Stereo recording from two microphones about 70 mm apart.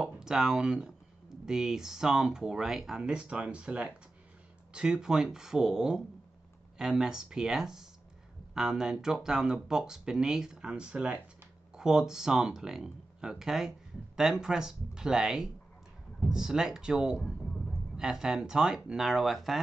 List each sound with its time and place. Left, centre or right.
0.0 s speech: centre
17.2 s a sound: centre
17.9 s speech: centre